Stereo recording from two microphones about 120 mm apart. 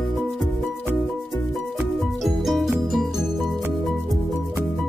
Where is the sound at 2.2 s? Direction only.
Centre (ahead or behind).